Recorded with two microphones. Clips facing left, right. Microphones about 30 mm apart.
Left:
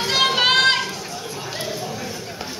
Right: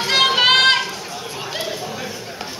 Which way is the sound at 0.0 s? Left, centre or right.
Centre.